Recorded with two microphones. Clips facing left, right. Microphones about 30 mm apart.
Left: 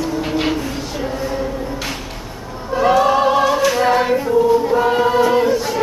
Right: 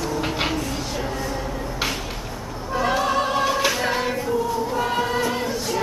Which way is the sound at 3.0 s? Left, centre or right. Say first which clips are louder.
Left 7 dB; centre.